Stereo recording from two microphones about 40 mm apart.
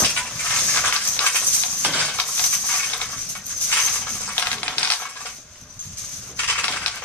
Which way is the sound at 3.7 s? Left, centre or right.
Left.